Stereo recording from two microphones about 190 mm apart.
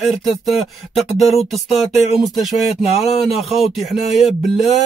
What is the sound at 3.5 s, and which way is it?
Speech, centre (ahead or behind).